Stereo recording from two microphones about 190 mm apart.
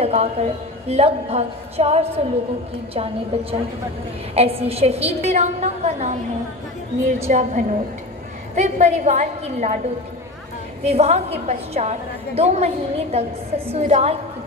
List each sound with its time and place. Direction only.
0.0 s a woman's voice: 35° right (ahead or behind)
7.2 s a woman's voice: 40° right (ahead or behind)
10.8 s a woman's voice: 35° right (ahead or behind)